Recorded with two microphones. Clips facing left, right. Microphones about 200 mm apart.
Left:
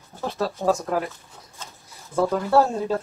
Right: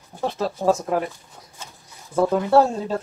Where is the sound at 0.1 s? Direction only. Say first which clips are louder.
Right 4 dB; 15° right (ahead or behind).